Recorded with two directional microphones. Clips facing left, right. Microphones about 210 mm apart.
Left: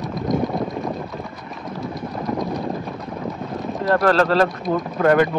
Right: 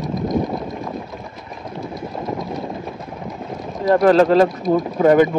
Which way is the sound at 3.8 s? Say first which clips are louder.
Right 5 dB; 15° right (ahead or behind).